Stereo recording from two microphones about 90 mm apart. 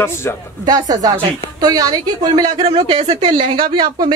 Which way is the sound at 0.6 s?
45° right (ahead or behind).